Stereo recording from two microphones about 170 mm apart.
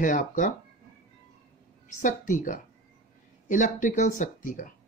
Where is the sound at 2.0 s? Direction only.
50° left (ahead or behind).